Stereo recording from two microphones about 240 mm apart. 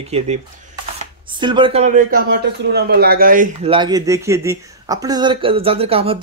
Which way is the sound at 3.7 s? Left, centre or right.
Centre.